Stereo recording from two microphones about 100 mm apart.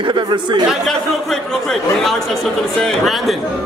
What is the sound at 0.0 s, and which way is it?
Speech, 50° right (ahead or behind).